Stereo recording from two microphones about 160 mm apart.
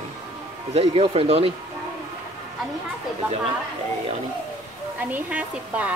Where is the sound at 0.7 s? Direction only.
35° right (ahead or behind).